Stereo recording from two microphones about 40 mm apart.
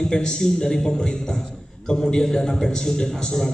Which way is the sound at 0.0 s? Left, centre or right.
Centre.